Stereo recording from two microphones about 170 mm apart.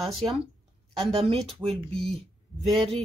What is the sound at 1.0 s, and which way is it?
Speech, 35° right (ahead or behind).